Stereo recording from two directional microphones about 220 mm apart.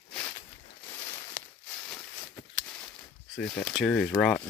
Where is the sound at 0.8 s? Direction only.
20° left (ahead or behind).